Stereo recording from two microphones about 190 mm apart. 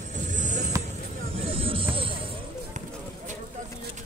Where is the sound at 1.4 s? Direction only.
30° right (ahead or behind).